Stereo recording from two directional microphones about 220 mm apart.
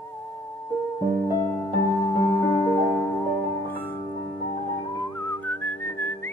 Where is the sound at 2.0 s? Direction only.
15° left (ahead or behind).